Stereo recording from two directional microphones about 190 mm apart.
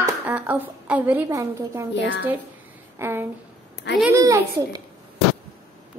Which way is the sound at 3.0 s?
10° right (ahead or behind).